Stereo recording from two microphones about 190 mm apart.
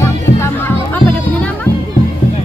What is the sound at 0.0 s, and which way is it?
Music, 10° left (ahead or behind).